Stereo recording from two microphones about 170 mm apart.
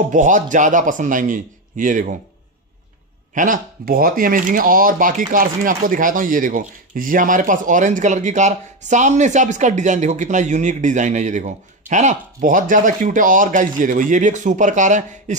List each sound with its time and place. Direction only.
0.1 s speech: 45° right (ahead or behind)
3.3 s speech: 50° right (ahead or behind)